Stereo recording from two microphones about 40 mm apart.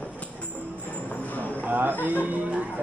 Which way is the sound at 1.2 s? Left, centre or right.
Left.